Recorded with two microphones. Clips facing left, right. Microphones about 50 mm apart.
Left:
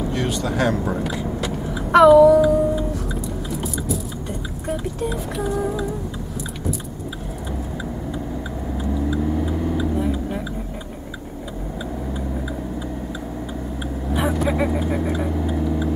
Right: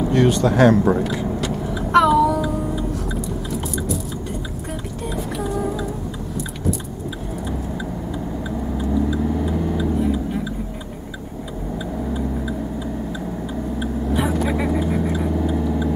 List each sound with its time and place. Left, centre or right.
0.3 s speech: centre
0.6 s speech: centre
1.0 s a sound: centre
4.6 s music: centre
8.7 s tick-tock: centre
13.7 s vehicle: centre